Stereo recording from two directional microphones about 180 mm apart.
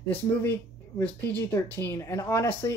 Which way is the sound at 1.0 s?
5° left (ahead or behind).